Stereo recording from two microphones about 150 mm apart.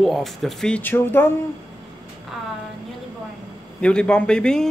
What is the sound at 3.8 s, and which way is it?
Speech, 5° left (ahead or behind).